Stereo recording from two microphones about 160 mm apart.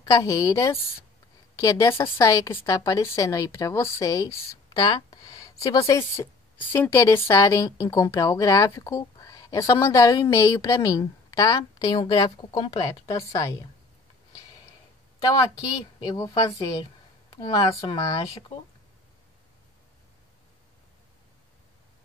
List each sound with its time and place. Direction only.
0.0 s speech: 20° left (ahead or behind)
15.1 s a woman's voice: 20° left (ahead or behind)